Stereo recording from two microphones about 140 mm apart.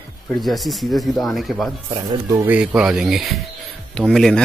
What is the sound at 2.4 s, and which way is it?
Speech, 10° right (ahead or behind).